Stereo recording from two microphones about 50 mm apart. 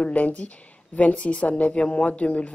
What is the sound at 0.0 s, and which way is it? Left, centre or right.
Speech, left.